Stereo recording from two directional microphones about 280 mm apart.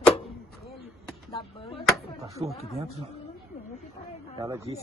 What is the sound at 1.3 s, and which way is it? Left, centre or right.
Speech, centre.